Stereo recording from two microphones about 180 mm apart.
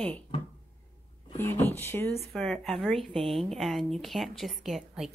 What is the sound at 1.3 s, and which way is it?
Speech, 10° left (ahead or behind).